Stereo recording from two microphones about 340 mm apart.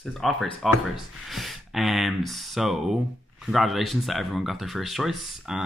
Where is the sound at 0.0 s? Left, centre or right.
Centre.